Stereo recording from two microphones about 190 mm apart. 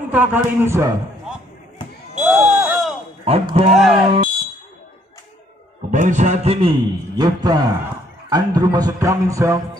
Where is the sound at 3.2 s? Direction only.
30° right (ahead or behind).